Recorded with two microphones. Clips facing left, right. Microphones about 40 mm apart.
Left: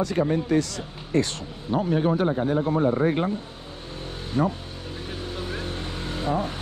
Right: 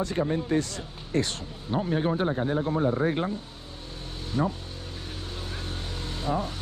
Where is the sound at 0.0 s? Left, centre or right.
Left.